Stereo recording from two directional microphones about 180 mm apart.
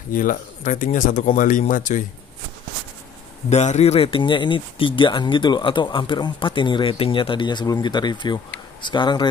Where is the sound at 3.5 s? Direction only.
40° left (ahead or behind).